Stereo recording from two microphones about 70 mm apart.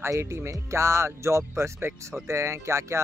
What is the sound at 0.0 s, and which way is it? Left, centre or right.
Speech, right.